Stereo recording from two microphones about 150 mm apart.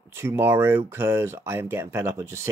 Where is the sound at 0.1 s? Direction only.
15° right (ahead or behind).